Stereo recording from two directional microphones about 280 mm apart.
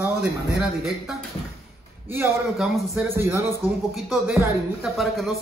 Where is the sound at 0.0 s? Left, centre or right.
Centre.